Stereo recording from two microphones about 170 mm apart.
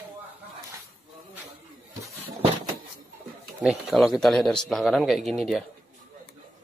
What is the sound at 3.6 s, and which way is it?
A man's voice, centre (ahead or behind).